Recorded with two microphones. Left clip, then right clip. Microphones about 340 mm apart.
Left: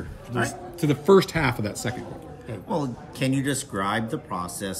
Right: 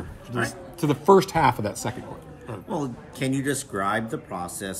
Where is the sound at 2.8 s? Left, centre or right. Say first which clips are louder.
Left 1 dB; centre.